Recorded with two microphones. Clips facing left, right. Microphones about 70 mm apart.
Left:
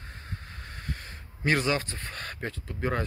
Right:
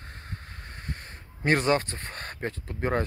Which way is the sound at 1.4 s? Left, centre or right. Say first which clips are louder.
Right 3 dB; right.